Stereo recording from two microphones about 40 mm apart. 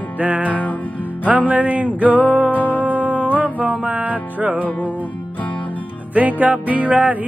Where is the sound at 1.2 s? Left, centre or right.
Right.